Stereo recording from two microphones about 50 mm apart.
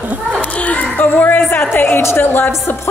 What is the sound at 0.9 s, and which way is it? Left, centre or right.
A woman's voice, left.